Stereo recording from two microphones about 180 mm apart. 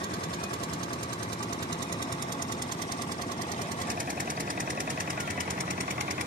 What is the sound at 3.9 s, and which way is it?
Engine, 50° right (ahead or behind).